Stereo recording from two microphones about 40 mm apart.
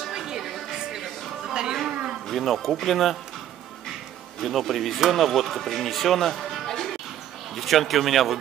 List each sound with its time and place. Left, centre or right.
0.3 s a sound: centre
1.9 s speech: centre
2.2 s speech: centre
4.4 s speech: centre